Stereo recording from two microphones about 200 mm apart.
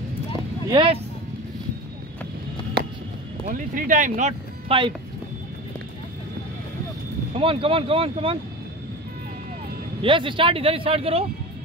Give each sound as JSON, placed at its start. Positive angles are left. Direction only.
{"t": 0.7, "sound": "speech", "side_deg": -25}
{"t": 3.4, "sound": "speech", "side_deg": -40}
{"t": 7.3, "sound": "speech", "side_deg": -30}
{"t": 10.0, "sound": "speech", "side_deg": -25}